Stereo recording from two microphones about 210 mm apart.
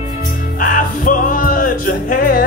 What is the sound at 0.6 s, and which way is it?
Music, 40° left (ahead or behind).